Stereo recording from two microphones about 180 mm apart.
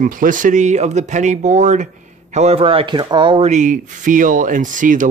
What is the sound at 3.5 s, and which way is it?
Speech, 45° right (ahead or behind).